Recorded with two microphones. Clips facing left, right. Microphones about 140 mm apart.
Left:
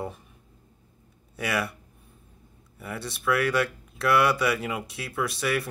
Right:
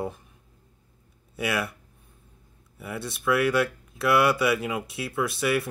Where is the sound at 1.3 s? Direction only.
Centre (ahead or behind).